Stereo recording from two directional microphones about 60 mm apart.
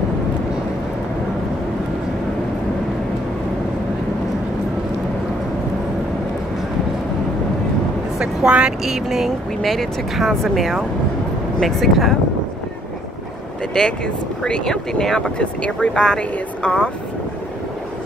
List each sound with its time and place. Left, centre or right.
8.2 s vehicle: centre
8.8 s speech: centre
9.6 s speech: centre
13.7 s speech: centre